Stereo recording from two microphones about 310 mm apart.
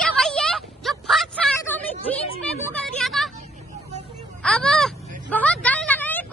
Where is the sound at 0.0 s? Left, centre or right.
Centre.